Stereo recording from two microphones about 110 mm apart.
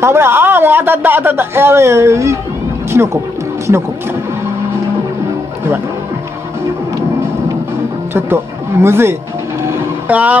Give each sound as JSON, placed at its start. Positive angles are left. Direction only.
{"t": 0.0, "sound": "a man's voice", "side_deg": -25}
{"t": 8.8, "sound": "a man's voice", "side_deg": -20}